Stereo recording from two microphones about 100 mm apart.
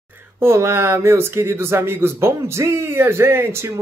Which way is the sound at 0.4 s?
25° right (ahead or behind).